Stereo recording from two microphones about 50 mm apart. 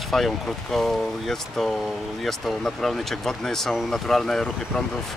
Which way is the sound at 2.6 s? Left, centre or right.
Centre.